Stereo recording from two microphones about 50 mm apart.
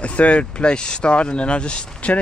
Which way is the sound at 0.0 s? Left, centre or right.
Left.